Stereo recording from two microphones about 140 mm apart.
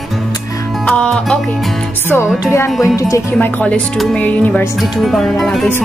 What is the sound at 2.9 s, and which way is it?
Speech, 25° left (ahead or behind).